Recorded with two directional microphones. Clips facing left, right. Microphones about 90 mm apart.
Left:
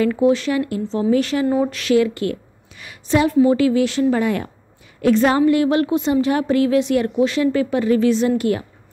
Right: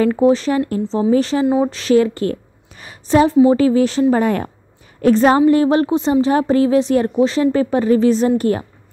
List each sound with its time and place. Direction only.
0.0 s a woman's voice: 35° right (ahead or behind)